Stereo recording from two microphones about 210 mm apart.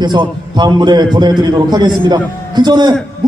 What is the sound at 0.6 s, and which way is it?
A man's voice, 20° right (ahead or behind).